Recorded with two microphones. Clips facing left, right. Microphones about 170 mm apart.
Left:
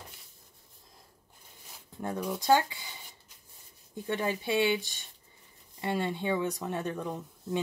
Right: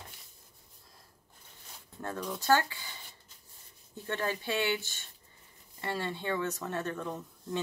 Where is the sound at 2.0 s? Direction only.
10° left (ahead or behind).